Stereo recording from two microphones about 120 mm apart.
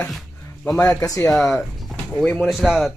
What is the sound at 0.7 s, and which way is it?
Speech, 30° left (ahead or behind).